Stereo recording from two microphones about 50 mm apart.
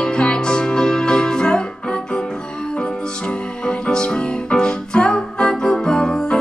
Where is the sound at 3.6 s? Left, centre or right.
Centre.